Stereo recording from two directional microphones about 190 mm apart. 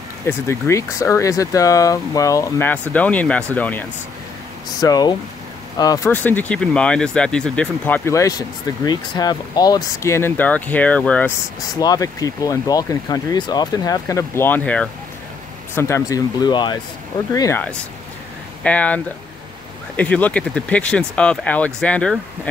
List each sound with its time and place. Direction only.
0.3 s speech: 15° left (ahead or behind)
4.7 s speech: 20° left (ahead or behind)
11.7 s speech: 20° left (ahead or behind)
20.0 s speech: 10° left (ahead or behind)